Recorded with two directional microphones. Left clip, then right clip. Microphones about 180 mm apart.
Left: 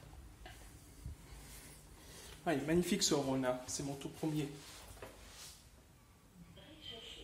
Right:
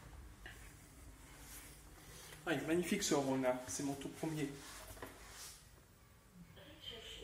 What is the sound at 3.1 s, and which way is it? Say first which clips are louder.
Speech: even; 15° left (ahead or behind).